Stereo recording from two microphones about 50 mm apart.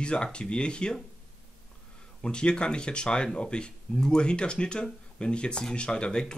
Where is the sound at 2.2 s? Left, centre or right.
Centre.